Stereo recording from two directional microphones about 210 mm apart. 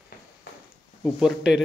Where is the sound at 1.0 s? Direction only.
Centre (ahead or behind).